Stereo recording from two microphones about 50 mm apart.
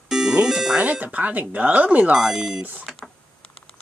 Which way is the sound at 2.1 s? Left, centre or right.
Centre.